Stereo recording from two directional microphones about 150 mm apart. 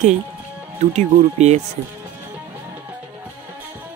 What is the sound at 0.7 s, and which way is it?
Speech, 50° right (ahead or behind).